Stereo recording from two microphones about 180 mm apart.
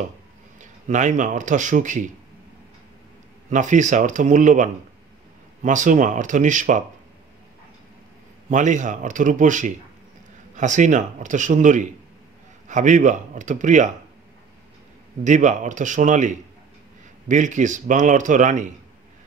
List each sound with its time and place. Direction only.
0.6 s a man's voice: 45° right (ahead or behind)
3.4 s a man's voice: 45° right (ahead or behind)
8.5 s a man's voice: 45° right (ahead or behind)
15.2 s a man's voice: 40° right (ahead or behind)